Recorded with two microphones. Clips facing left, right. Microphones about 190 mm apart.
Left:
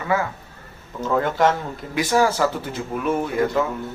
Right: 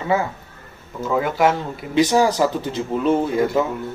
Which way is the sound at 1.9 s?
20° right (ahead or behind).